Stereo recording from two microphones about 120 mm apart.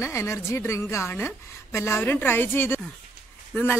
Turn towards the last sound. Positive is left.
turn(degrees=15)  # may be behind; listen again after turning